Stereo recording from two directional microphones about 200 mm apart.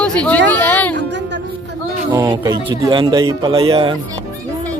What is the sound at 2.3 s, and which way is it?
Speech, 20° right (ahead or behind).